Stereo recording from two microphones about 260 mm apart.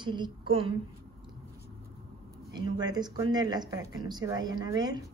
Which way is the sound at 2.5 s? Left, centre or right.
Centre.